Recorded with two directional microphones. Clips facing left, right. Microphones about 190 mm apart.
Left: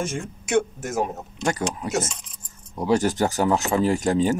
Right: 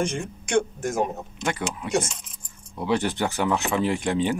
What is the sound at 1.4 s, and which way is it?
Speech, 40° left (ahead or behind).